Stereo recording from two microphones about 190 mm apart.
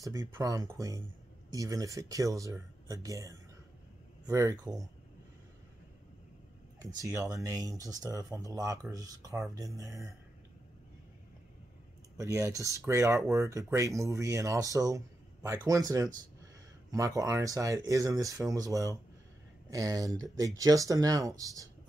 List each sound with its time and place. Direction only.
0.0 s speech: 15° right (ahead or behind)
7.0 s speech: 15° right (ahead or behind)
12.2 s speech: 15° right (ahead or behind)